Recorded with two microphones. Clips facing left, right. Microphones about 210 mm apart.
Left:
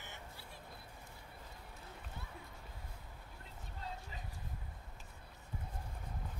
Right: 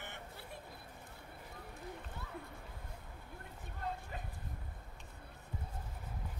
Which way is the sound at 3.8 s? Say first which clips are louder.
Right 6 dB; 55° right (ahead or behind).